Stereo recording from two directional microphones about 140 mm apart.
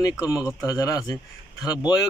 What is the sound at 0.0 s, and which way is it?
A man's voice, 25° left (ahead or behind).